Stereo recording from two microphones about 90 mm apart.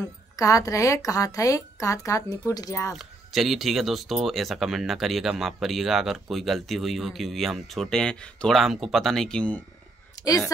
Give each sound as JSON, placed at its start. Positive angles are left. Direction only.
{"t": 0.0, "sound": "speech", "side_deg": 40}
{"t": 2.9, "sound": "speech", "side_deg": 0}
{"t": 8.5, "sound": "speech", "side_deg": -5}